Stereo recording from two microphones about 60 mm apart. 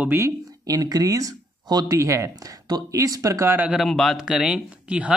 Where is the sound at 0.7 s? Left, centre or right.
Right.